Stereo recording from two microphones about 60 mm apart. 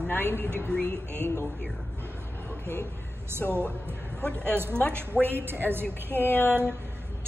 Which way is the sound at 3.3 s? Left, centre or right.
Right.